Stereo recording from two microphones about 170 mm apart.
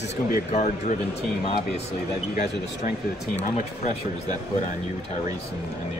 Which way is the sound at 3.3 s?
40° left (ahead or behind).